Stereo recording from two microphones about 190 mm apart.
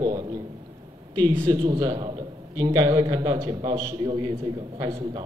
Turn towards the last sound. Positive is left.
turn(degrees=-25)  # may be behind; listen again after turning